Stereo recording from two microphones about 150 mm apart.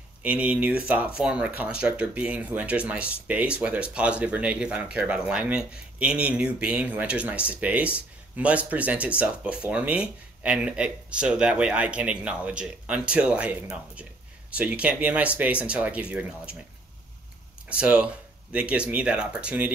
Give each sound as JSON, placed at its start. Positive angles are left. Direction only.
{"t": 0.2, "sound": "speech", "side_deg": -10}
{"t": 17.6, "sound": "speech", "side_deg": -5}